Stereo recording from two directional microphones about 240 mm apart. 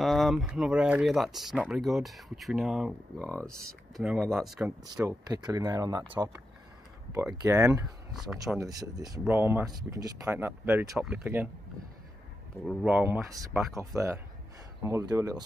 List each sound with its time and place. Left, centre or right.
0.0 s speech: centre
4.9 s speech: centre
8.1 s speech: centre
8.5 s speech: centre
12.6 s speech: centre